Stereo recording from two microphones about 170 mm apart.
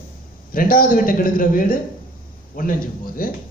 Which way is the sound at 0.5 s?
55° left (ahead or behind).